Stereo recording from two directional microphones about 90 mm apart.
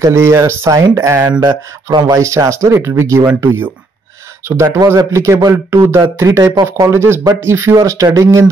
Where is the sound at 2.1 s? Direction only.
35° right (ahead or behind).